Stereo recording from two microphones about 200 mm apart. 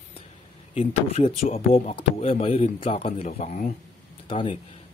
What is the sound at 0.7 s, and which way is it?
Speech, 30° left (ahead or behind).